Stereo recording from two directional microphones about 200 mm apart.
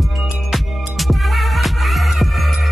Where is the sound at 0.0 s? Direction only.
Centre (ahead or behind).